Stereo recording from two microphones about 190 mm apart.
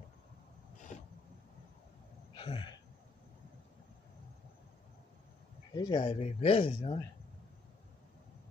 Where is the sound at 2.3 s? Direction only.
25° left (ahead or behind).